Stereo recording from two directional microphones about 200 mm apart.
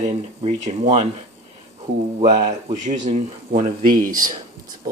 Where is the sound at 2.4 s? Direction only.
35° right (ahead or behind).